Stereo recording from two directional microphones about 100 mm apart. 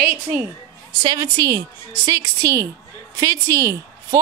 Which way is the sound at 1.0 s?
40° right (ahead or behind).